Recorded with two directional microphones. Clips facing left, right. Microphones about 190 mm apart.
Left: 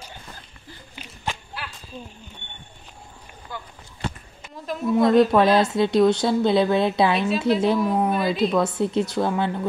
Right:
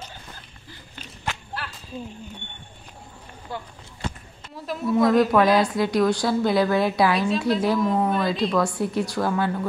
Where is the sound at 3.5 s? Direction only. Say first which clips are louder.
Right 3 dB; 30° right (ahead or behind).